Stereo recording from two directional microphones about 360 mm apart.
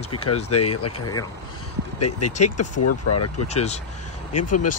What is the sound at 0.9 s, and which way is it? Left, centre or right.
Speech, centre.